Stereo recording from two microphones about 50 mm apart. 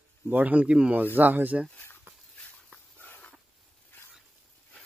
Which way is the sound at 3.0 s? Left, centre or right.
Left.